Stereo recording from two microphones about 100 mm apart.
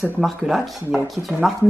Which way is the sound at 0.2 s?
Centre (ahead or behind).